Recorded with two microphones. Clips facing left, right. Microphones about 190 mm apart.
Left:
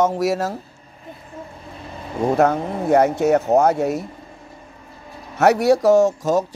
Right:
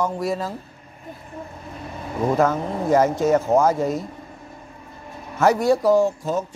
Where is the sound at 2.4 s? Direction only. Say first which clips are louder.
Left 2 dB; 65° left (ahead or behind).